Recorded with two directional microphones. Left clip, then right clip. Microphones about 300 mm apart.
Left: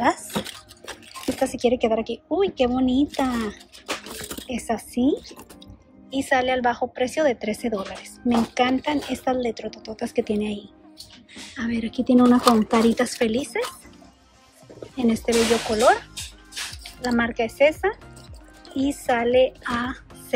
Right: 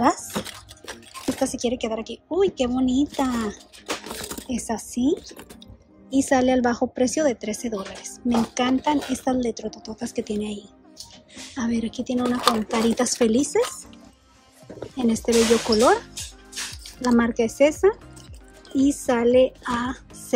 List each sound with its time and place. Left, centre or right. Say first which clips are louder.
0.1 s a sound: even; centre
1.4 s a woman's voice: left 5 dB; centre
4.1 s a sound: right 1 dB; centre
4.5 s a woman's voice: left 3 dB; centre
15.0 s speech: left 1 dB; centre
16.8 s a woman's voice: right 2 dB; centre